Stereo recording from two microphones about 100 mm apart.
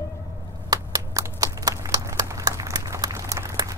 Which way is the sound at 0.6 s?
35° right (ahead or behind).